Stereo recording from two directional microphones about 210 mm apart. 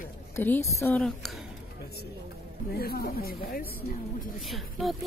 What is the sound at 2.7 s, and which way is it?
Speech, 45° left (ahead or behind).